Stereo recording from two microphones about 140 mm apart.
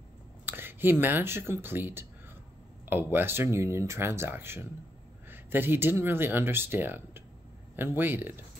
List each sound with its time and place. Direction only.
0.5 s speech: 15° right (ahead or behind)